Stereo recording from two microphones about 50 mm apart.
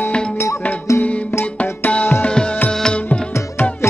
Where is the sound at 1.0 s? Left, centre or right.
Left.